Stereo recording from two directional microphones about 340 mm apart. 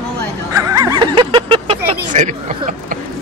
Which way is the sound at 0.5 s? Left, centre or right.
Centre.